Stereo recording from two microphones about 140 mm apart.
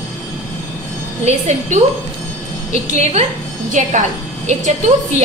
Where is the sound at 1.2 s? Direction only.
55° right (ahead or behind).